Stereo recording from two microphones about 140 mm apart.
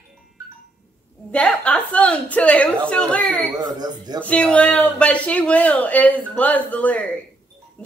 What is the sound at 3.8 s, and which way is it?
Speech, 30° right (ahead or behind).